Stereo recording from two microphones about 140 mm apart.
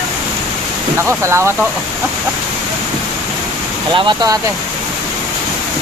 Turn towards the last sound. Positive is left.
turn(degrees=-30)  # may be behind; listen again after turning